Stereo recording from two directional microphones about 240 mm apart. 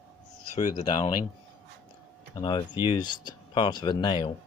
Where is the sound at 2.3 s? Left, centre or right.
Centre.